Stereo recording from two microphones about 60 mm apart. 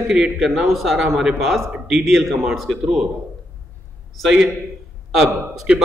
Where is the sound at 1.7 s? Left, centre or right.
Centre.